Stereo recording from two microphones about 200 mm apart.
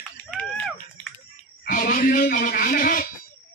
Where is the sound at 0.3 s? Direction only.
Centre (ahead or behind).